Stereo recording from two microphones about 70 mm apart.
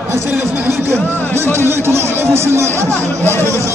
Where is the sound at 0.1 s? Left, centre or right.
Right.